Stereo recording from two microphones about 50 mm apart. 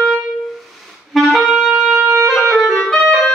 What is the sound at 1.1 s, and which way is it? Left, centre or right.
Clarinet, centre.